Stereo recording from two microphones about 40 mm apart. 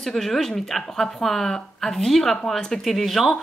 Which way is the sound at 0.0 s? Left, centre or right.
Centre.